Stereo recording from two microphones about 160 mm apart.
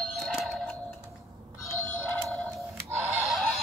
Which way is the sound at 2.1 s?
10° left (ahead or behind).